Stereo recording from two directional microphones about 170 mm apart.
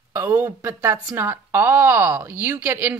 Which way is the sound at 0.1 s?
15° right (ahead or behind).